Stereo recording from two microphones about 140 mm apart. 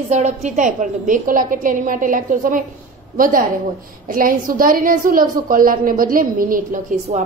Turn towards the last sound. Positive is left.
turn(degrees=-75)  # may be behind; listen again after turning